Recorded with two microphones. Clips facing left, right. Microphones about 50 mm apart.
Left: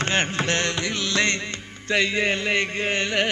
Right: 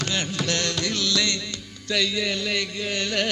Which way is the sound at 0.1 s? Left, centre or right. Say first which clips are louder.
Left 4 dB; left.